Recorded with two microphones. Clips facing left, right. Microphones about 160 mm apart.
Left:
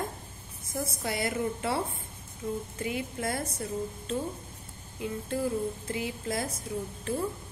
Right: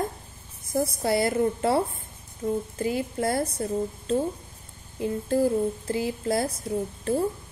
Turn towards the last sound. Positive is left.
turn(degrees=-35)  # may be behind; listen again after turning